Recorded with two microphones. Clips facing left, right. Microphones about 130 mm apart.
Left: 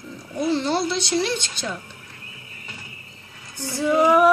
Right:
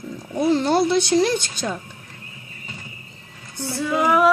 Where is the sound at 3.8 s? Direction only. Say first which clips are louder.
Left 2 dB; 15° left (ahead or behind).